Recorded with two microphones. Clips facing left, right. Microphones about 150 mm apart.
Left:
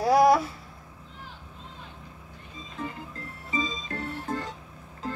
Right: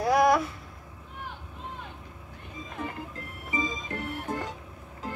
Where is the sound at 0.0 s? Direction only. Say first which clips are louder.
Left 2 dB; 30° left (ahead or behind).